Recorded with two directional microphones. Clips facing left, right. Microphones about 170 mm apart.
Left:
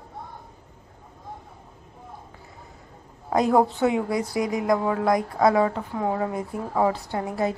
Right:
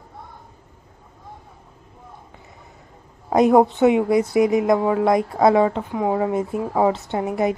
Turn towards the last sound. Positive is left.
turn(degrees=-20)  # may be behind; listen again after turning